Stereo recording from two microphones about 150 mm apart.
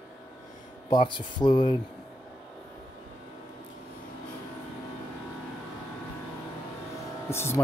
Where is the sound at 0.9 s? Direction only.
30° left (ahead or behind).